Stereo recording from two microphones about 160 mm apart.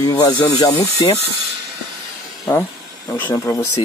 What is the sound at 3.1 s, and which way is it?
Speech, 15° left (ahead or behind).